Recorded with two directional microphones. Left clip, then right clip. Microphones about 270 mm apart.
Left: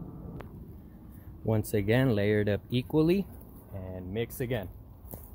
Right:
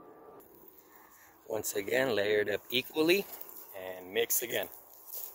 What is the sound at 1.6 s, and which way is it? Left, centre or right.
Speech, centre.